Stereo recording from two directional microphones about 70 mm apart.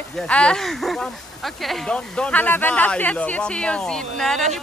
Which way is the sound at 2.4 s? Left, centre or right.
Left.